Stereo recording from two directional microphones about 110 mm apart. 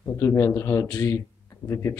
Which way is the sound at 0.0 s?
25° left (ahead or behind).